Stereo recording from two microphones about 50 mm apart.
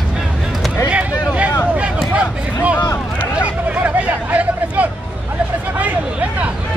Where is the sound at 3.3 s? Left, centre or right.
Right.